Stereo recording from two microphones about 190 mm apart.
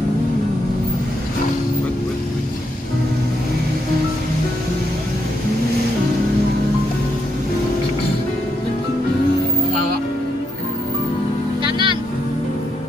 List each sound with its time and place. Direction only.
11.6 s music: 25° right (ahead or behind)